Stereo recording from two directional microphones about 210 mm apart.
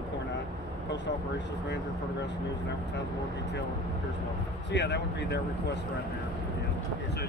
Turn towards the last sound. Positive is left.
turn(degrees=55)  # may be behind; listen again after turning